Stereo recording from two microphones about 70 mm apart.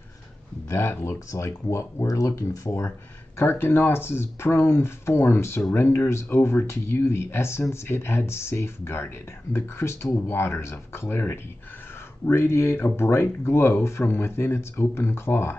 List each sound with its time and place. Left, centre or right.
0.7 s speech: left
3.3 s speech: left